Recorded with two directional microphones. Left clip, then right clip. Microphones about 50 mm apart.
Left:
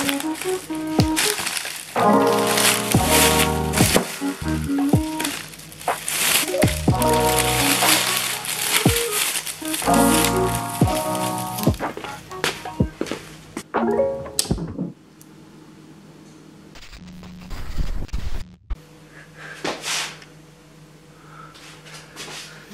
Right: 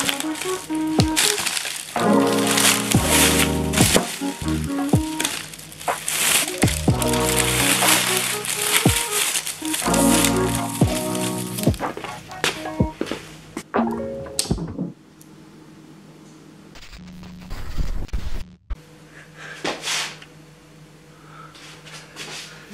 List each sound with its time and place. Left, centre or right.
0.0 s music: centre
13.6 s music: left
14.3 s music: centre
17.5 s music: centre
19.4 s a sound: centre